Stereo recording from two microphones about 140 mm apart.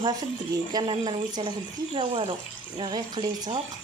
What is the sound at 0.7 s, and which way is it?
Speech, 30° right (ahead or behind).